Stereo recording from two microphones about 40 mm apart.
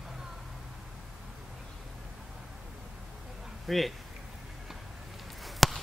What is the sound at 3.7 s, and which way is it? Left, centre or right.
Speech, centre.